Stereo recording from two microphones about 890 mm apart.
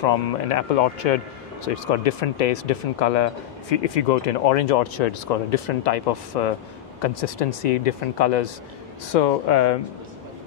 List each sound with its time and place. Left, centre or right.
0.0 s speech: left